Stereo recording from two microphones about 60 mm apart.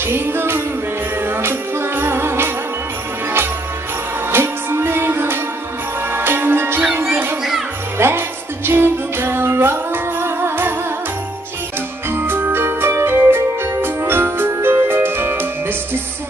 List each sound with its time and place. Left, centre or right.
0.0 s music: right
4.3 s music: right
8.0 s music: right
12.1 s music: right